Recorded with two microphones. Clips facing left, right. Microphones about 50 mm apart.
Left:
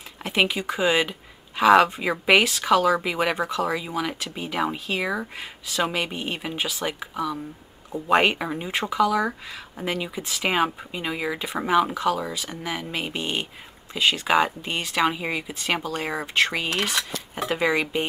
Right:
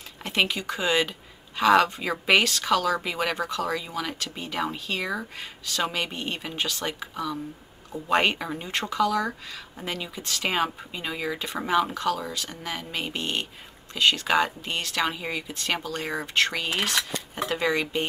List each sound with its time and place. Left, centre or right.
0.2 s speech: centre